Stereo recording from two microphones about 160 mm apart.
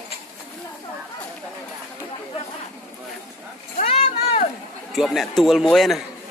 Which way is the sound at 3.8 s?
45° left (ahead or behind).